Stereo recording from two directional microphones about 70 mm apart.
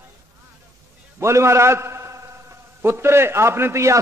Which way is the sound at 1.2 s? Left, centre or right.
Right.